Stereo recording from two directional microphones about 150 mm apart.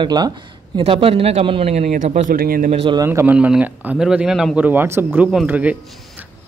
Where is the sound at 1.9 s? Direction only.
60° right (ahead or behind); by 2.7 s 75° right (ahead or behind).